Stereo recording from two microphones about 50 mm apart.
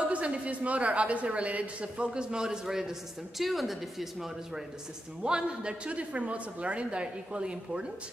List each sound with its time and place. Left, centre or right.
0.0 s a woman's voice: right; by 4.3 s centre
5.2 s a woman's voice: centre